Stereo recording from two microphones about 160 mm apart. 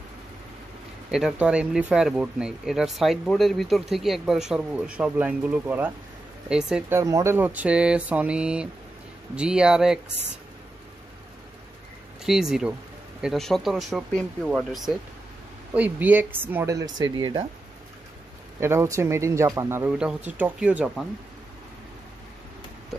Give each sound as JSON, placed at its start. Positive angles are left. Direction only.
{"t": 1.1, "sound": "speech", "side_deg": -5}
{"t": 12.3, "sound": "speech", "side_deg": -5}
{"t": 18.6, "sound": "speech", "side_deg": -15}
{"t": 19.9, "sound": "speech", "side_deg": -5}